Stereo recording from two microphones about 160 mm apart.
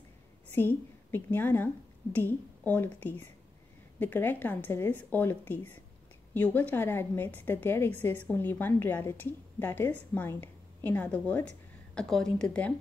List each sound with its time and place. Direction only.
0.6 s a woman's voice: 10° left (ahead or behind)